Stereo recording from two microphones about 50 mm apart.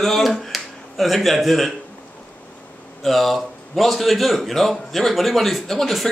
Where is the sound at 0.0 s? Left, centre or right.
Centre.